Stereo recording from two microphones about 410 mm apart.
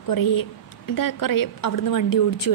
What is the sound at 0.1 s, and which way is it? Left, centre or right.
A woman's voice, left.